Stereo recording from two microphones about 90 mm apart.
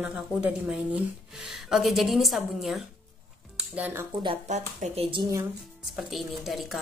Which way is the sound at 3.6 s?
20° right (ahead or behind).